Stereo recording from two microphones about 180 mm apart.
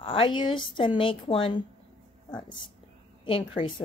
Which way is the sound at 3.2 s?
30° left (ahead or behind).